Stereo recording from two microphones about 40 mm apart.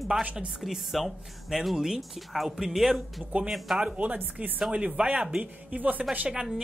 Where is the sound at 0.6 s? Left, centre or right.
Centre.